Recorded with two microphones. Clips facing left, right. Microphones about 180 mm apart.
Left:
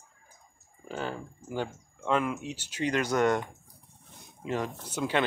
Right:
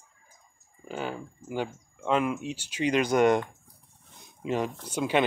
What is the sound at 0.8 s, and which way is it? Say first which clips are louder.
Speech: right 1 dB; 10° right (ahead or behind).